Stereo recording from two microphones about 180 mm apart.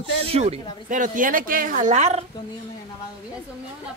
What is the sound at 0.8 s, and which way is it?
A woman's voice, 45° right (ahead or behind).